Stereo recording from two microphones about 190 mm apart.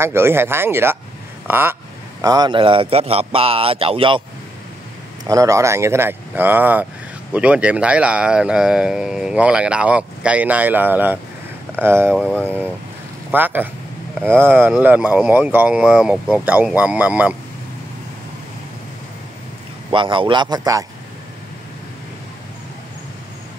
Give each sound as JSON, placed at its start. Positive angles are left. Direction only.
{"t": 0.0, "sound": "speech", "side_deg": -15}
{"t": 5.2, "sound": "speech", "side_deg": -20}
{"t": 13.3, "sound": "speech", "side_deg": -10}
{"t": 19.9, "sound": "speech", "side_deg": -25}